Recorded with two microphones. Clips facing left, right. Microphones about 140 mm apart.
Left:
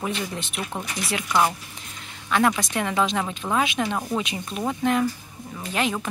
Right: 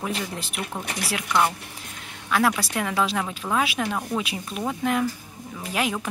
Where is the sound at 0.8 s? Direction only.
60° right (ahead or behind).